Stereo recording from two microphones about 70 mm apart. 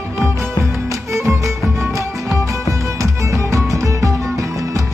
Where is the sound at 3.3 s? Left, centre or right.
Right.